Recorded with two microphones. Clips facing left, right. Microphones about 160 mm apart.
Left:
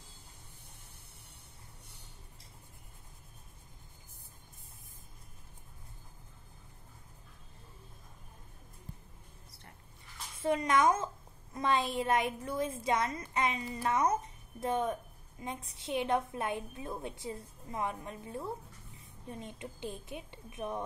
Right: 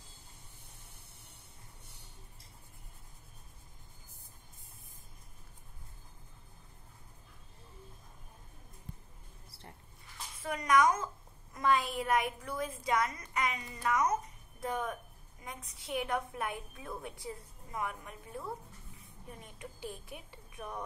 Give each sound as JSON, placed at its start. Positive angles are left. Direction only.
{"t": 10.4, "sound": "a woman's voice", "side_deg": 25}